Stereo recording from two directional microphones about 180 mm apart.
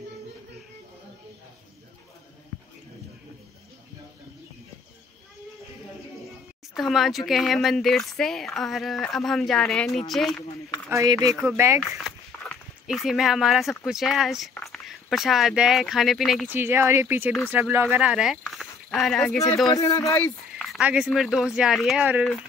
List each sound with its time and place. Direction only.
6.7 s speech: centre (ahead or behind)
10.9 s speech: 20° right (ahead or behind)
12.0 s speech: centre (ahead or behind)
16.5 s speech: 10° right (ahead or behind)
17.3 s speech: centre (ahead or behind)
17.6 s speech: 10° right (ahead or behind)
19.7 s speech: 20° left (ahead or behind)
20.6 s speech: centre (ahead or behind)